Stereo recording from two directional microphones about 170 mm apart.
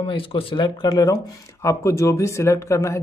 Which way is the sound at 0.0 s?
30° left (ahead or behind).